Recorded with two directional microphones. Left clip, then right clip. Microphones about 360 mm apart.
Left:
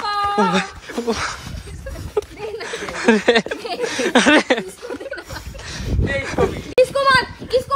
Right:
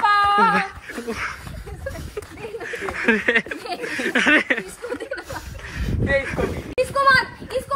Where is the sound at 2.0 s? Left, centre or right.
Centre.